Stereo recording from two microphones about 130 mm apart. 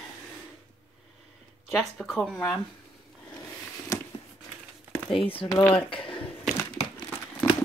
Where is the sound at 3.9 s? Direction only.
25° left (ahead or behind).